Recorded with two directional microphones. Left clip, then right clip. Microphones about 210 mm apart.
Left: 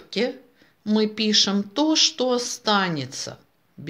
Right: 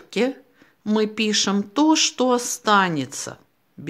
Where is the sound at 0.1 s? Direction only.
30° right (ahead or behind).